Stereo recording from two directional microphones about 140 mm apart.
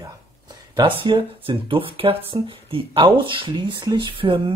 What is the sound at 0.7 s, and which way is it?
Speech, 35° right (ahead or behind).